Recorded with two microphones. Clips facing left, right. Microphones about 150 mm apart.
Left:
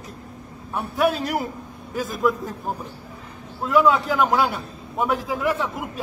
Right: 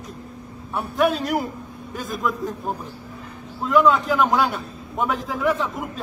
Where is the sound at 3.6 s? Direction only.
5° left (ahead or behind).